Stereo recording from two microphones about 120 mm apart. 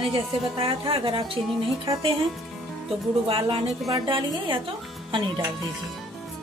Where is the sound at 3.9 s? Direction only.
40° right (ahead or behind).